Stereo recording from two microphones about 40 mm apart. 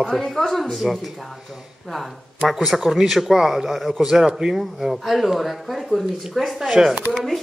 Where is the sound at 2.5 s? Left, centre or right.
Centre.